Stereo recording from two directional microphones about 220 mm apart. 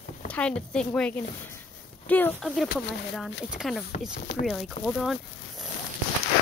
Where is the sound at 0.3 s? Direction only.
5° left (ahead or behind).